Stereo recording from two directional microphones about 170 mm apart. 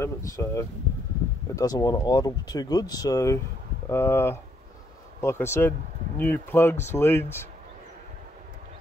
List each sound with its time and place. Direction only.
0.0 s speech: 20° left (ahead or behind)